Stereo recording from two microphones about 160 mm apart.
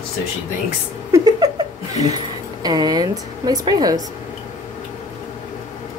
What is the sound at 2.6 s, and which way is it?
Speech, 25° right (ahead or behind).